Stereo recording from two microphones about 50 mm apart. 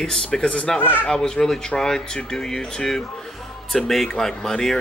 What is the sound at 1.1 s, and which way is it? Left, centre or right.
Speech, centre.